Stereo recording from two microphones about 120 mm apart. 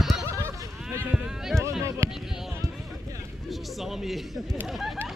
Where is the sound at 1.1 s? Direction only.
5° right (ahead or behind).